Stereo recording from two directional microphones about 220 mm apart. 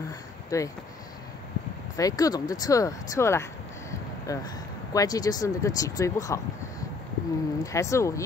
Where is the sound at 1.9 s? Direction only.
15° left (ahead or behind).